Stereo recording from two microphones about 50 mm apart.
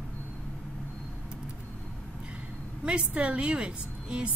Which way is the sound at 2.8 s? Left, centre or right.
Right.